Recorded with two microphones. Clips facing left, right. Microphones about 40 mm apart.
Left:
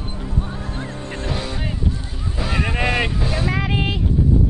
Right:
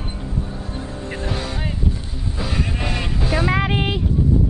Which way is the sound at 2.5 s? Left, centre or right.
Left.